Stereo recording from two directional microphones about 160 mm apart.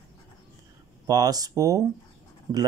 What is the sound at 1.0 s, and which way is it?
Speech, 20° right (ahead or behind).